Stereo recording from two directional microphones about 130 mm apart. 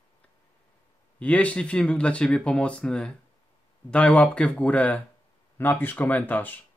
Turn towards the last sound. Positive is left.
turn(degrees=15)  # may be behind; listen again after turning